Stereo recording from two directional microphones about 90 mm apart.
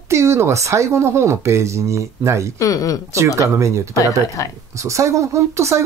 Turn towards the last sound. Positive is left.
turn(degrees=-35)  # may be behind; listen again after turning